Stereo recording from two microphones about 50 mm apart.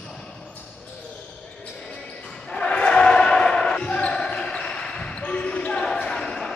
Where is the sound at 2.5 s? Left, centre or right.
Centre.